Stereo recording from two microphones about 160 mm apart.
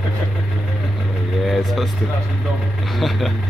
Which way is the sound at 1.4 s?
Centre (ahead or behind).